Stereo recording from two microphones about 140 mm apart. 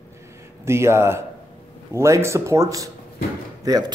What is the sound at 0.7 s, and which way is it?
Speech, 20° right (ahead or behind).